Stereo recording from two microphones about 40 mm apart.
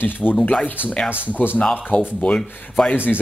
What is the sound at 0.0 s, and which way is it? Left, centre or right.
Speech, left.